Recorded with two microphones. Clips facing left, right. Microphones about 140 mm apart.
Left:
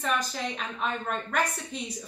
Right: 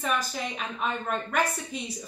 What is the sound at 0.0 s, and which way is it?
A woman's voice, 5° right (ahead or behind).